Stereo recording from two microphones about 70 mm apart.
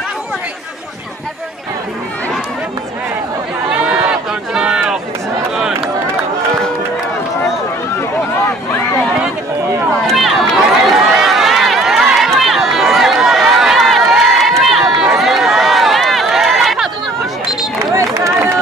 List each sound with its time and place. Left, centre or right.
3.8 s crowd: centre
10.0 s run: centre
17.9 s crowd: right